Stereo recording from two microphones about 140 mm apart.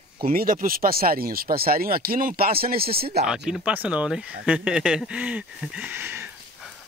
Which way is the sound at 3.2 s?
5° right (ahead or behind).